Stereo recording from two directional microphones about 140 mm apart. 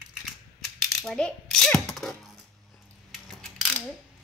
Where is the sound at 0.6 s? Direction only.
5° left (ahead or behind).